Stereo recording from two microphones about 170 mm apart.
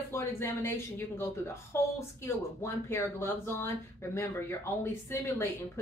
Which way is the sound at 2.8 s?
15° left (ahead or behind).